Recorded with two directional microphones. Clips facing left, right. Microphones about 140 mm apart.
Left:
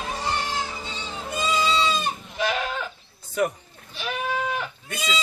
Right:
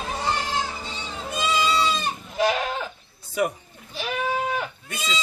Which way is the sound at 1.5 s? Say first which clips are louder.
Even; centre (ahead or behind).